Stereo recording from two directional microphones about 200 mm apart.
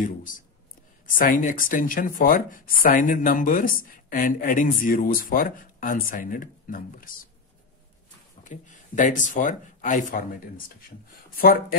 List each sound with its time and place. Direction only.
1.0 s speech: 45° left (ahead or behind)
8.5 s speech: 40° left (ahead or behind)